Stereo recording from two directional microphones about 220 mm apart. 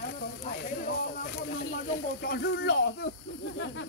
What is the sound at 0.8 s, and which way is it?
Speech, 40° left (ahead or behind).